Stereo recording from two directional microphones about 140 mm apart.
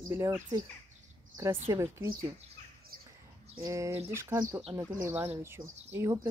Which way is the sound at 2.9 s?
90° right.